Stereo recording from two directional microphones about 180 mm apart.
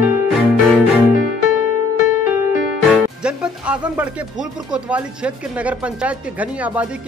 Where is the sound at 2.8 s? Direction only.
Centre (ahead or behind).